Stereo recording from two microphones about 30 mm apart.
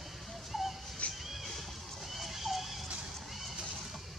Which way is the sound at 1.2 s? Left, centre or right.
Centre.